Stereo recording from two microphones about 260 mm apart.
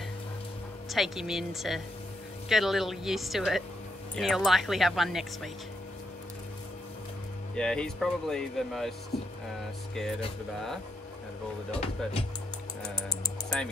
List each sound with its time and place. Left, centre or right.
0.8 s speech: centre
7.5 s speech: centre
11.8 s speech: left
13.5 s speech: centre